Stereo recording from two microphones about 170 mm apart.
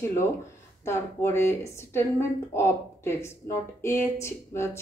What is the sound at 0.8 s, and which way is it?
A woman's voice, 15° left (ahead or behind).